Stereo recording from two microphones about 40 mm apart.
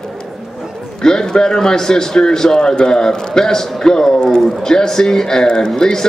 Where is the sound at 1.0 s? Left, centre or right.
Centre.